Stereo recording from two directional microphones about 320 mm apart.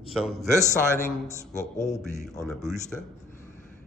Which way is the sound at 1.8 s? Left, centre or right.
Left.